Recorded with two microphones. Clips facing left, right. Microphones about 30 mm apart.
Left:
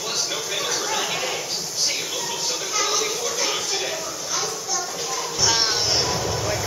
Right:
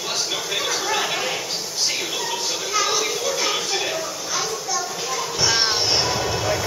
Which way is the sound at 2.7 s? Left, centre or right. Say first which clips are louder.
Right 2 dB; centre.